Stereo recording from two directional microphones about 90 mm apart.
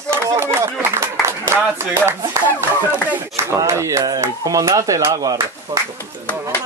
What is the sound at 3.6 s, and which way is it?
Speech, 35° right (ahead or behind).